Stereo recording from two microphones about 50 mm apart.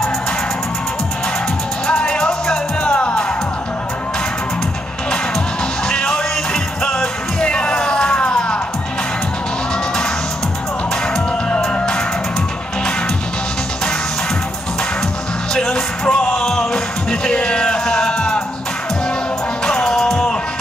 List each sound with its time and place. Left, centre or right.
1.9 s music: centre
5.9 s music: centre
15.5 s music: centre
19.6 s music: centre